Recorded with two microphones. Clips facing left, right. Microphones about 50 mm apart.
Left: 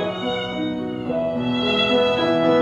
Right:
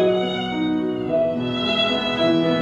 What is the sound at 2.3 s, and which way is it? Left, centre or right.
Music, centre.